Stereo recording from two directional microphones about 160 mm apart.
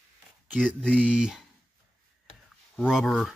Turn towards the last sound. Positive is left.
turn(degrees=0)  # may be behind; listen again after turning